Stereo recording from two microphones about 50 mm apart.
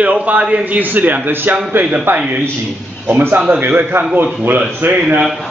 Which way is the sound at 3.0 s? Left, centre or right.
Right.